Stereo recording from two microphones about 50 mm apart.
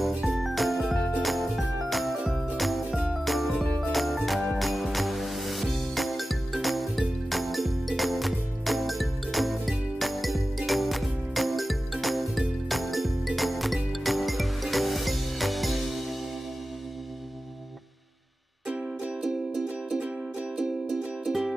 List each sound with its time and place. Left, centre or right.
0.2 s jingle: centre
1.2 s music: centre
18.7 s music: right
19.2 s music: centre